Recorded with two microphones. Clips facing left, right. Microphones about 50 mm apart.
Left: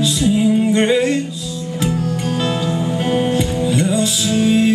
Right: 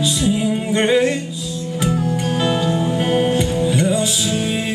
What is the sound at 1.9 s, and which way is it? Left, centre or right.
Music, centre.